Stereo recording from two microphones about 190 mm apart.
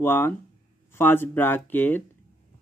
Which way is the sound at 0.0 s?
10° left (ahead or behind).